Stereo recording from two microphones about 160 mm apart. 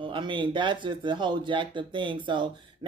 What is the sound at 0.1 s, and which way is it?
Speech, 30° right (ahead or behind).